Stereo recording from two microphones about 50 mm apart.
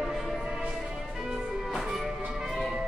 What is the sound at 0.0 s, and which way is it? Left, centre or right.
Music, centre.